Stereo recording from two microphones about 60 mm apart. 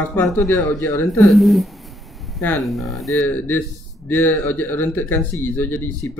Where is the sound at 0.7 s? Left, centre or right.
Left.